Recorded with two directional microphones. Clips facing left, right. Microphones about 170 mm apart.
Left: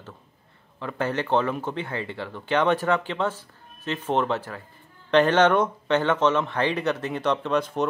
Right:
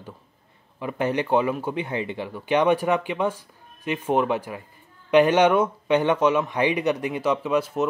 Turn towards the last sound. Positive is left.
turn(degrees=-5)  # may be behind; listen again after turning